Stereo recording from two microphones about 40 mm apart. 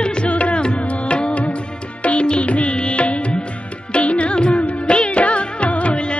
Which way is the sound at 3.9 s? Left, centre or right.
Left.